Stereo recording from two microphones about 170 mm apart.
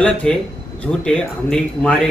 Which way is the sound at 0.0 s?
5° left (ahead or behind).